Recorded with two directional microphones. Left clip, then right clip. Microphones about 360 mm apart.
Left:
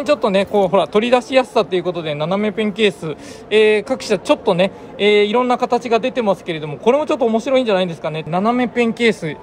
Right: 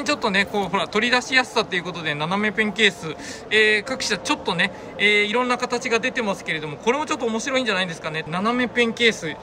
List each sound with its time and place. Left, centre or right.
0.0 s speech: centre